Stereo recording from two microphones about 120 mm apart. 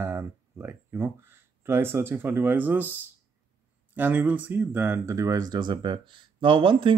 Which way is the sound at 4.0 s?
15° right (ahead or behind).